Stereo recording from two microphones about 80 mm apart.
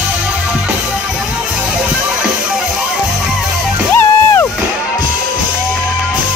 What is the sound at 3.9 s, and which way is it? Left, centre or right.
Music, left.